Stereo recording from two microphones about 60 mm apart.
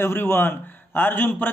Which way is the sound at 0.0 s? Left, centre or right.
Left.